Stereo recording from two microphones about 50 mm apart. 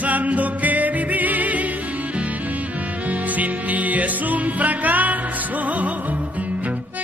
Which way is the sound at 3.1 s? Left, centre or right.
Right.